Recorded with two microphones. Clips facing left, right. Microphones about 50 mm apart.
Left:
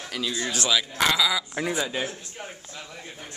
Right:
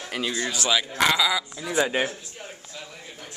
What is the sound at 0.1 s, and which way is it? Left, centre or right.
Speech, right.